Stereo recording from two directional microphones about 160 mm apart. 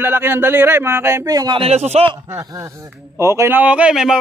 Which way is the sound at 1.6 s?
40° right (ahead or behind).